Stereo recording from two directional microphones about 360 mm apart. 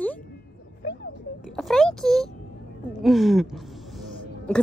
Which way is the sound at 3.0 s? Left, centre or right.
Centre.